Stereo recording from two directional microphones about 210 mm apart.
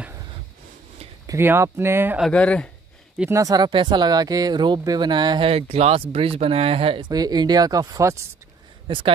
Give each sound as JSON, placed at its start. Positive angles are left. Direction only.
{"t": 1.2, "sound": "speech", "side_deg": -15}
{"t": 2.2, "sound": "speech", "side_deg": 5}
{"t": 3.2, "sound": "speech", "side_deg": -15}